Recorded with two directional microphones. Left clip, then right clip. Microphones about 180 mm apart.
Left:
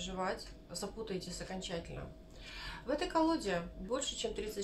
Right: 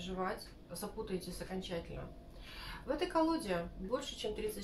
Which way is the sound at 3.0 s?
35° left (ahead or behind).